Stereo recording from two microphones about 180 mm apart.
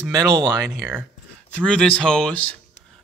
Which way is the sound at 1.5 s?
5° left (ahead or behind).